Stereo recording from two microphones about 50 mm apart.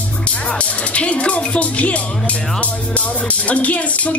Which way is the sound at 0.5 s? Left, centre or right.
Left.